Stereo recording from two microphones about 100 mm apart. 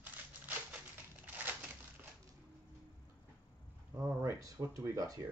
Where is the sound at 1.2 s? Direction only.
15° right (ahead or behind).